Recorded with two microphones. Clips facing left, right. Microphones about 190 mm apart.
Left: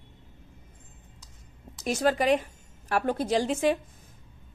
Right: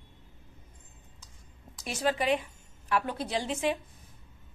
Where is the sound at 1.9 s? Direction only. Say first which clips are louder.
Left 5 dB; 45° left (ahead or behind).